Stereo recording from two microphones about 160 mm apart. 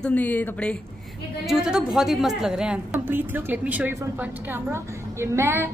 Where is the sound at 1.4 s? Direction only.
5° right (ahead or behind).